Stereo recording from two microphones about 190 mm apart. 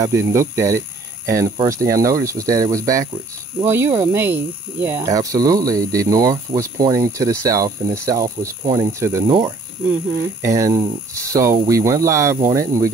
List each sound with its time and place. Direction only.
0.0 s speech: 15° right (ahead or behind)